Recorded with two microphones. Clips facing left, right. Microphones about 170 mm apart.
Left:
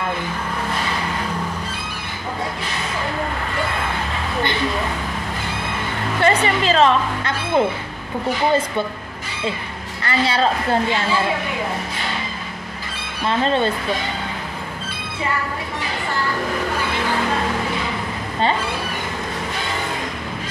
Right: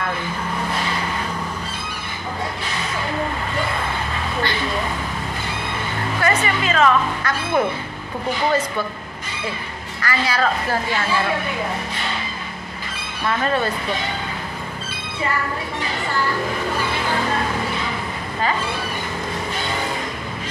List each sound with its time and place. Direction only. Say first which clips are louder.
6.2 s speech: left 4 dB; 30° left (ahead or behind)
10.0 s speech: left 2 dB; 25° left (ahead or behind)
13.3 s speech: left 2 dB; 25° left (ahead or behind)